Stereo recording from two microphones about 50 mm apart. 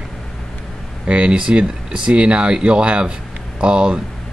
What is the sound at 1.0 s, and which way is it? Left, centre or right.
Speech, right.